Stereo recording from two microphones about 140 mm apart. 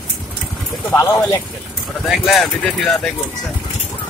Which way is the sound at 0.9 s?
20° left (ahead or behind).